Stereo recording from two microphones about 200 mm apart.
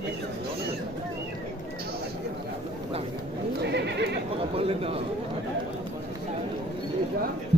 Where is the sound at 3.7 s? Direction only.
60° right (ahead or behind).